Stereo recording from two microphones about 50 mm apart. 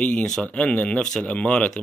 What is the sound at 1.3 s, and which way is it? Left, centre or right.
Speech, left.